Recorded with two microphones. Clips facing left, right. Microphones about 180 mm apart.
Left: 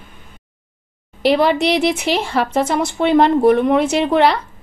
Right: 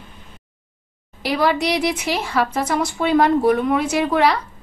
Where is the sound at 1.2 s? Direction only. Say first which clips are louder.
Left 5 dB; 25° left (ahead or behind).